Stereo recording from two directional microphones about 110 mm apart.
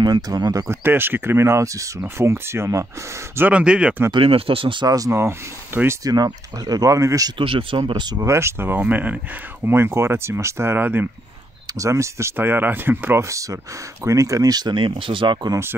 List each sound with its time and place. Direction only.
0.0 s speech: 35° right (ahead or behind)
0.8 s speech: 20° right (ahead or behind)
3.3 s speech: 15° right (ahead or behind)
4.1 s speech: 55° right (ahead or behind)
4.8 s speech: 35° right (ahead or behind)
5.1 s speech: 20° right (ahead or behind)
6.0 s speech: 35° right (ahead or behind)
7.3 s speech: 50° right (ahead or behind)
8.3 s speech: 25° right (ahead or behind)
11.7 s speech: 30° right (ahead or behind); by 15.3 s 50° right (ahead or behind)